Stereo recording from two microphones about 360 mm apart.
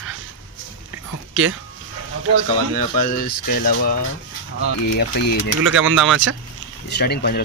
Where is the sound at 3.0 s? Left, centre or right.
Left.